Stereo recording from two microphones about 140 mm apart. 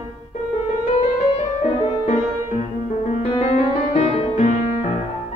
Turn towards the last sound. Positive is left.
turn(degrees=65)  # may be behind; listen again after turning